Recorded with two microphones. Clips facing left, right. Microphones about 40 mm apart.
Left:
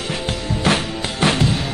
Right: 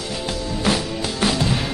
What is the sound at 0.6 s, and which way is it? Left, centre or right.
Music, left.